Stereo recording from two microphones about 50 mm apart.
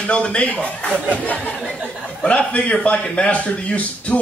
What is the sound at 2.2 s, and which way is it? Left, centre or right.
Speech, left.